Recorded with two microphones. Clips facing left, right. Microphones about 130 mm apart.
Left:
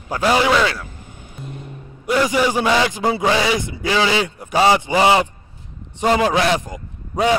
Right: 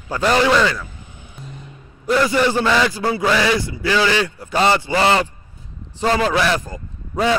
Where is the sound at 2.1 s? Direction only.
10° left (ahead or behind).